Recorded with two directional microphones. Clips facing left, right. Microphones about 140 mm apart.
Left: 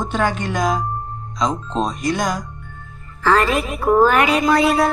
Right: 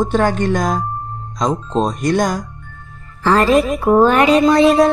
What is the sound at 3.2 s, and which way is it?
A woman's voice, 30° right (ahead or behind).